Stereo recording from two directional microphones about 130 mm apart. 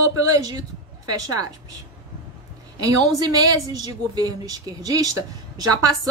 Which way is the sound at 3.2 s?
30° right (ahead or behind).